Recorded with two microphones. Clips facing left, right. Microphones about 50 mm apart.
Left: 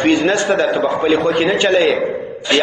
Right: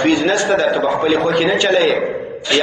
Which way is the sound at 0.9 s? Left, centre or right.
Centre.